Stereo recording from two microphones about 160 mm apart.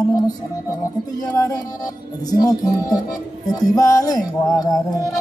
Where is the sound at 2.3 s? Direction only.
25° left (ahead or behind).